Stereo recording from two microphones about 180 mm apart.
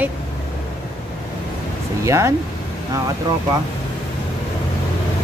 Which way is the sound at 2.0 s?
15° right (ahead or behind).